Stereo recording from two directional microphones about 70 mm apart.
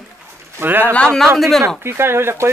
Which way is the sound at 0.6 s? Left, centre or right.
Right.